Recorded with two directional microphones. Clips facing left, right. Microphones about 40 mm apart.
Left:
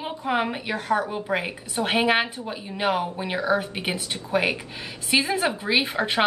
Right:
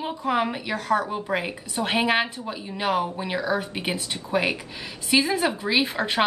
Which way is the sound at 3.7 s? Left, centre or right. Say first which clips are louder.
Even; centre.